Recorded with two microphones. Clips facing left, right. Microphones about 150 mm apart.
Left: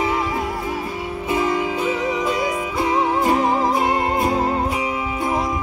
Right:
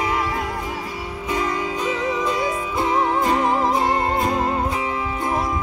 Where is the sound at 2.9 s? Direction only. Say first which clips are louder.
Left 1 dB; 5° left (ahead or behind).